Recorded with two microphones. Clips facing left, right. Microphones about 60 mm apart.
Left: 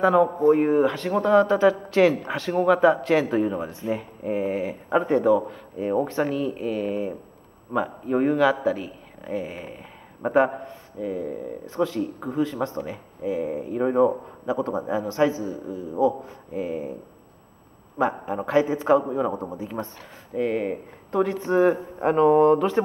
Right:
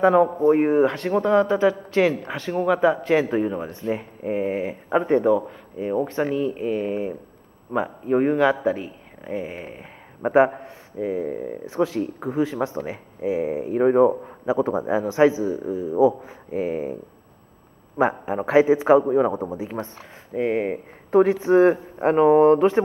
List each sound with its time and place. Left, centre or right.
0.0 s a man's voice: centre; by 11.5 s right
11.6 s a man's voice: centre
17.9 s a man's voice: right
19.3 s a man's voice: centre